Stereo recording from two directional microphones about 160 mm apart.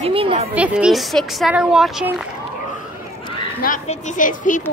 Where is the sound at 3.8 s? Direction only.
50° left (ahead or behind).